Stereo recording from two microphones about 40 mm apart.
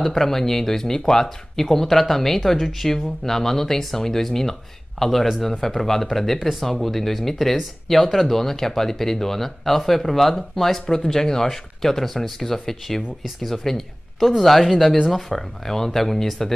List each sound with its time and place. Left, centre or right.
0.0 s speech: centre